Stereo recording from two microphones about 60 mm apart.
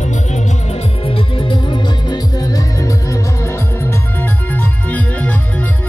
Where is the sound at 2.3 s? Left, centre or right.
Left.